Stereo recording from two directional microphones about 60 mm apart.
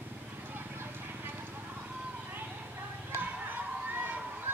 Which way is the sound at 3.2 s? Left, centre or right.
Right.